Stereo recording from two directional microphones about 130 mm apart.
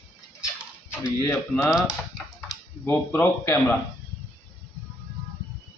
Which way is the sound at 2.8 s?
15° left (ahead or behind).